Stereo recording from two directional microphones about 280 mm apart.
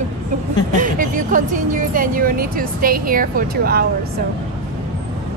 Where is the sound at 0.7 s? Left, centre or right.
Right.